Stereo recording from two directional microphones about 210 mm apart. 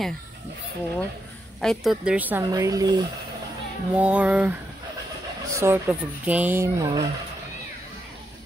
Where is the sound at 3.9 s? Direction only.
5° right (ahead or behind).